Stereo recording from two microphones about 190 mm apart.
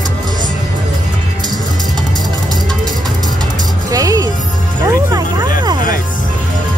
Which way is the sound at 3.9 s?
15° right (ahead or behind).